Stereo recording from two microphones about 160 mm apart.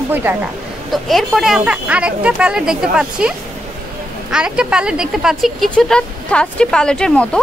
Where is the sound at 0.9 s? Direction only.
Centre (ahead or behind).